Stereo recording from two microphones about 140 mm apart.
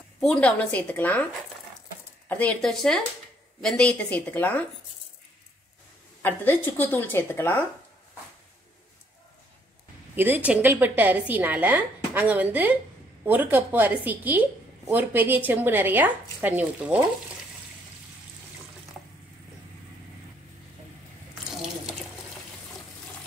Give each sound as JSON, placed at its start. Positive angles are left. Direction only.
{"t": 0.2, "sound": "a woman's voice", "side_deg": 5}
{"t": 2.2, "sound": "a woman's voice", "side_deg": 10}
{"t": 6.6, "sound": "a woman's voice", "side_deg": 15}
{"t": 10.1, "sound": "a woman's voice", "side_deg": -15}